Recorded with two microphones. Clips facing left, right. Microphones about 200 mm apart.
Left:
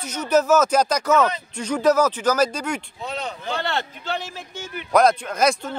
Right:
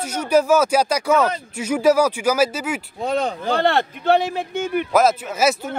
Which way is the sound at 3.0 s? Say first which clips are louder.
Right 13 dB; 50° right (ahead or behind).